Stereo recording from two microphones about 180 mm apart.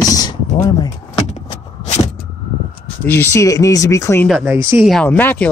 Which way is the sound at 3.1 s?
15° left (ahead or behind).